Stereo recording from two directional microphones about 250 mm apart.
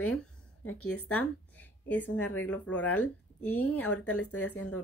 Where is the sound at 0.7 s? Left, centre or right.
Left.